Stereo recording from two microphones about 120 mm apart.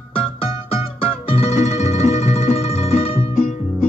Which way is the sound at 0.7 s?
55° left (ahead or behind).